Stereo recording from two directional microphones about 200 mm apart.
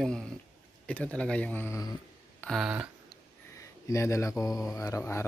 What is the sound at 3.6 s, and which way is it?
Speech, 15° left (ahead or behind).